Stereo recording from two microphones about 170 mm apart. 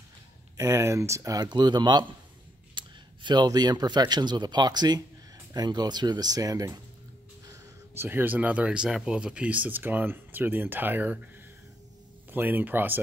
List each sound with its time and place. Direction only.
0.6 s speech: 15° right (ahead or behind)
2.8 s a sound: 30° right (ahead or behind)
3.3 s speech: 25° right (ahead or behind)
7.9 s speech: 15° right (ahead or behind)
12.3 s speech: 10° right (ahead or behind)